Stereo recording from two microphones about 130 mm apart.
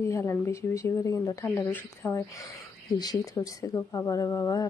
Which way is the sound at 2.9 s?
30° left (ahead or behind).